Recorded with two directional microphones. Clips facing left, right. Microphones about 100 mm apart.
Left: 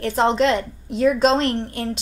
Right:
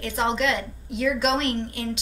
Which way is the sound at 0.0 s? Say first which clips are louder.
Left 6 dB; 40° left (ahead or behind).